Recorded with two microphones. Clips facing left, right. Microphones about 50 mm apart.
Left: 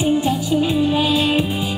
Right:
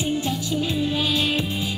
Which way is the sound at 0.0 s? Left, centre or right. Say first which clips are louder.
Left 7 dB; centre.